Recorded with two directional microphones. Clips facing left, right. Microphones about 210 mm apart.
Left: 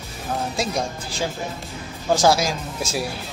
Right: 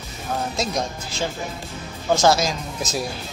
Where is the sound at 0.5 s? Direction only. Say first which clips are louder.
Even; 10° left (ahead or behind).